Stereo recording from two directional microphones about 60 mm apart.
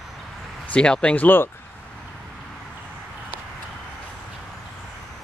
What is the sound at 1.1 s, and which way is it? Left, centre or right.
Speech, left.